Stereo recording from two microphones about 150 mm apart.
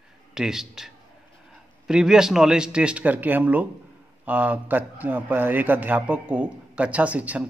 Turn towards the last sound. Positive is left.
turn(degrees=-10)  # may be behind; listen again after turning